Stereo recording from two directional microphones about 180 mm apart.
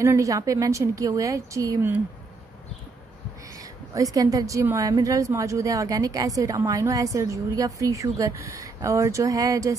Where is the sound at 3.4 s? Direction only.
20° right (ahead or behind).